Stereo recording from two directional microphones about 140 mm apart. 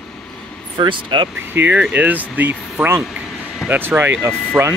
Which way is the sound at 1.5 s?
10° right (ahead or behind).